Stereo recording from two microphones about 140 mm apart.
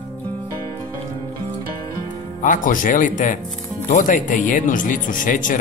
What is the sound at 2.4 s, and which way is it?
Speech, 70° left (ahead or behind).